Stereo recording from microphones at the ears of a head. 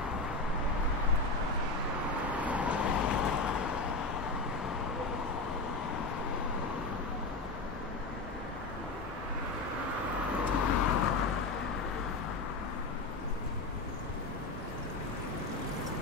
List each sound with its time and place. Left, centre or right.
2.8 s vehicle: left
10.5 s vehicle: left